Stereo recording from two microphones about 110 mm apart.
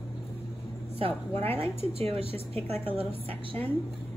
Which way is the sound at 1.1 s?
20° left (ahead or behind).